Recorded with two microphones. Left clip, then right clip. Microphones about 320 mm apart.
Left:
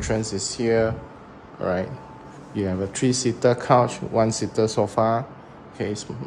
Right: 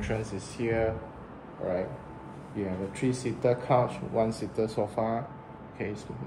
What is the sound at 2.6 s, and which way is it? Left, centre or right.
Speech, left.